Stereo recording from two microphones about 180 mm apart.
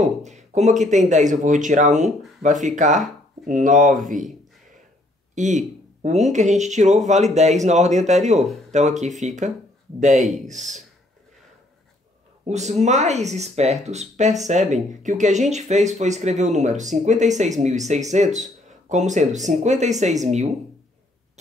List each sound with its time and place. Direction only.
0.0 s speech: 40° right (ahead or behind)
5.3 s speech: 45° right (ahead or behind)
12.4 s speech: 40° right (ahead or behind)